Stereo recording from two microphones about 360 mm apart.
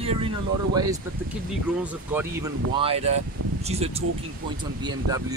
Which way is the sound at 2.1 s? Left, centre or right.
Centre.